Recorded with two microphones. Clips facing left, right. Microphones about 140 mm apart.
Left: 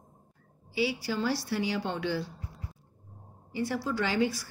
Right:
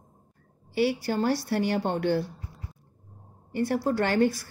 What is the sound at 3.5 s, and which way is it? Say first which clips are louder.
Speech: right 5 dB; 55° right (ahead or behind).